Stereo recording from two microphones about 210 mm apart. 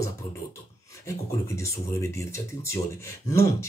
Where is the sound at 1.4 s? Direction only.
15° left (ahead or behind).